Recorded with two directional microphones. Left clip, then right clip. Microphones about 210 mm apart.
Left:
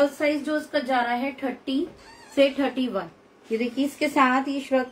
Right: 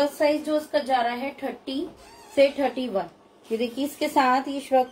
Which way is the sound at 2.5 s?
15° left (ahead or behind).